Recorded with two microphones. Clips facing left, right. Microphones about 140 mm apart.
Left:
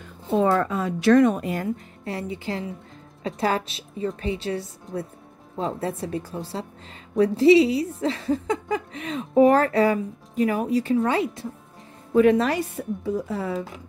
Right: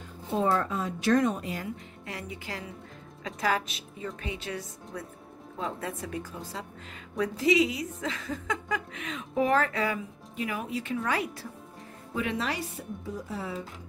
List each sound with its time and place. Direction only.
0.3 s a woman's voice: 90° left; by 1.7 s 55° left (ahead or behind)
2.0 s a woman's voice: 30° left (ahead or behind)
12.1 s a woman's voice: 45° left (ahead or behind)
13.0 s a woman's voice: 80° left